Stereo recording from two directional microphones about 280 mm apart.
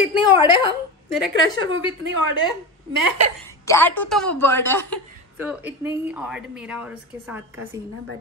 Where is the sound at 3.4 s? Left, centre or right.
Centre.